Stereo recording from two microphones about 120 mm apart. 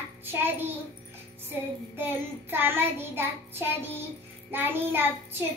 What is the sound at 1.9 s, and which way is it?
Child singing, 20° right (ahead or behind).